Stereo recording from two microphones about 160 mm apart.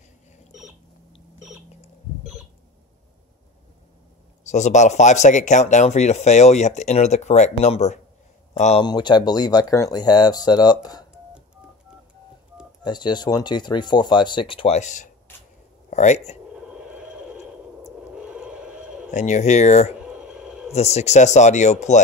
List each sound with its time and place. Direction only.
4.5 s speech: 45° left (ahead or behind)
8.8 s speech: 30° left (ahead or behind)
12.8 s speech: 25° left (ahead or behind); by 16.3 s 45° left (ahead or behind)
18.1 s a sound: 5° right (ahead or behind)
19.1 s speech: 45° left (ahead or behind)
20.0 s a sound: 5° right (ahead or behind)
20.7 s speech: 40° left (ahead or behind)